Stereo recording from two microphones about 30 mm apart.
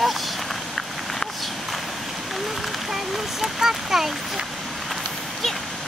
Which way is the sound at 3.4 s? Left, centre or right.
Centre.